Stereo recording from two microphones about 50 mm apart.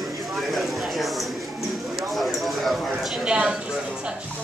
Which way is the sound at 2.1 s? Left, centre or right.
Centre.